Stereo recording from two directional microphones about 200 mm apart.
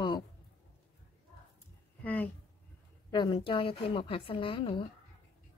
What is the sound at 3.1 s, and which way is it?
A woman's voice, 25° left (ahead or behind).